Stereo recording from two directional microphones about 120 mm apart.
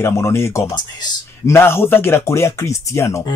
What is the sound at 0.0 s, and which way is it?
Speech, 20° left (ahead or behind).